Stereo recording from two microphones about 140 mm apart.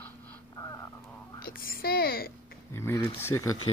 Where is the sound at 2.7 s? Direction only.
20° left (ahead or behind).